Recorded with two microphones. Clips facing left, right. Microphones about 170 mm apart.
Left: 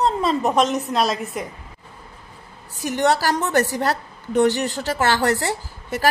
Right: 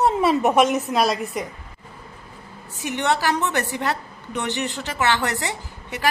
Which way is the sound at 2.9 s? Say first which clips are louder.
Left 3 dB; 40° left (ahead or behind).